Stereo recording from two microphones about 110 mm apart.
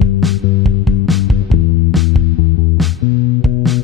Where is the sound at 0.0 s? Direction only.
Centre (ahead or behind).